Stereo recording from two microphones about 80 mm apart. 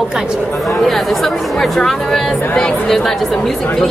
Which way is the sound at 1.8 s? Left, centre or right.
Centre.